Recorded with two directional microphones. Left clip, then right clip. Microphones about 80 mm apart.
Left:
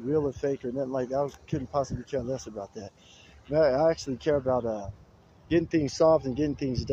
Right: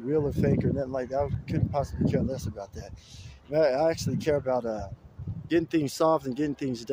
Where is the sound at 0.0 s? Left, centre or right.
Right.